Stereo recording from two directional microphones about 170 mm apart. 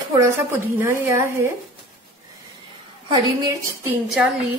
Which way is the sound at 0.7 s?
15° right (ahead or behind).